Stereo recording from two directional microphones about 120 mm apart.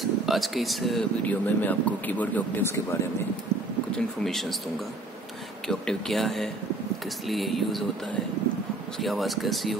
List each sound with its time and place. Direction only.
0.0 s speech: centre (ahead or behind)
1.2 s speech: 15° left (ahead or behind)
3.9 s speech: 5° left (ahead or behind)
5.7 s speech: 5° left (ahead or behind)
9.0 s speech: centre (ahead or behind)